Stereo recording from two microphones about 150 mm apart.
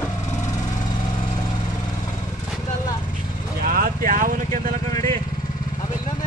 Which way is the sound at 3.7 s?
70° right (ahead or behind).